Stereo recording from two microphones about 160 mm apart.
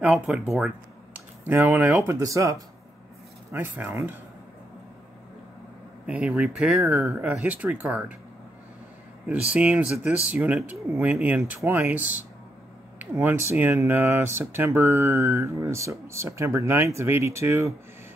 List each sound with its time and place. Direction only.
0.0 s speech: 5° right (ahead or behind)
3.5 s speech: 15° right (ahead or behind)
6.0 s speech: 5° right (ahead or behind)
9.3 s speech: 10° right (ahead or behind)